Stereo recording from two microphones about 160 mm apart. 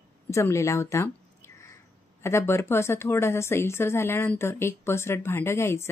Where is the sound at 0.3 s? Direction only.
20° left (ahead or behind).